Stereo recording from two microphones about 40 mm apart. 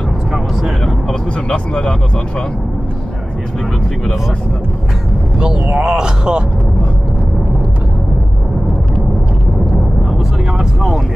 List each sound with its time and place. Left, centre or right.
0.3 s vehicle: centre
1.0 s vehicle: left
5.4 s speech: right
10.1 s vehicle: centre